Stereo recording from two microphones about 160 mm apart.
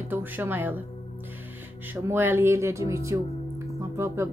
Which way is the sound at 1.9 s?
15° right (ahead or behind).